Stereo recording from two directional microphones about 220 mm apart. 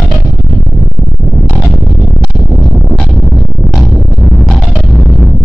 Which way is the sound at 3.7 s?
Centre (ahead or behind).